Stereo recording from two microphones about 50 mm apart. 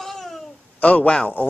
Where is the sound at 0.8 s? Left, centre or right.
Left.